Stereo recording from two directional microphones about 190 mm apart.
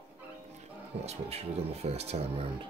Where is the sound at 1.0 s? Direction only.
35° right (ahead or behind).